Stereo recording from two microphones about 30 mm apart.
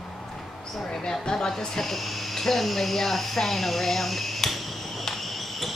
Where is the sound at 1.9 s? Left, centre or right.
Centre.